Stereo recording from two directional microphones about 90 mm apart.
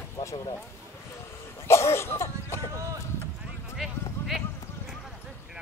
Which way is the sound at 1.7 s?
30° left (ahead or behind).